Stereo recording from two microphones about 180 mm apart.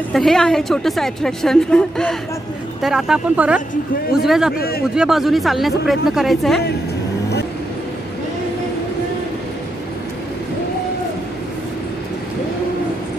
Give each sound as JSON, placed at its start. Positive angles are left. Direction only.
{"t": 0.1, "sound": "a woman's voice", "side_deg": 0}
{"t": 4.6, "sound": "a man's voice", "side_deg": 60}
{"t": 4.9, "sound": "a woman's voice", "side_deg": -5}